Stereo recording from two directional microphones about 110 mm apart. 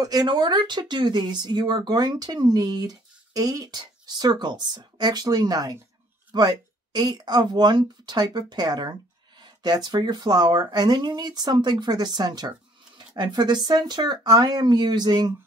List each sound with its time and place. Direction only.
0.0 s speech: 40° right (ahead or behind)